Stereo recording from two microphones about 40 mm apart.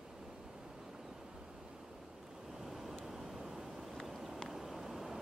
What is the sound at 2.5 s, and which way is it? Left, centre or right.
Waves, centre.